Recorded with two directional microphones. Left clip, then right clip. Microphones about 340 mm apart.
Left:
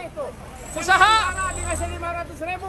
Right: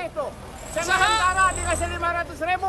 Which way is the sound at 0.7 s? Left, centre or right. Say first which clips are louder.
Left 4 dB; centre.